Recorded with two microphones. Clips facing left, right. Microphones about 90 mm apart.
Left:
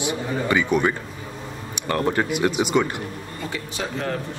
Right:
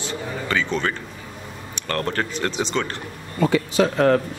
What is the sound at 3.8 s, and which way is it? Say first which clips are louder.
Speech: right 10 dB; 75° right (ahead or behind).